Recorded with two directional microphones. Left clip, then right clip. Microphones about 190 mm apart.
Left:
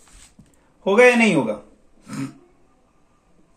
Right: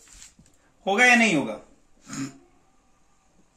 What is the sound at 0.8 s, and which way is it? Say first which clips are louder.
Speech: left 6 dB; 45° left (ahead or behind).